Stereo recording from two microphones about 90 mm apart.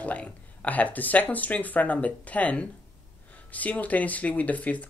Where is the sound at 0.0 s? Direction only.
15° left (ahead or behind).